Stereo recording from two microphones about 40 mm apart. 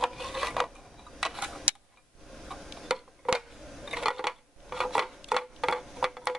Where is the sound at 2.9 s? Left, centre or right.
Centre.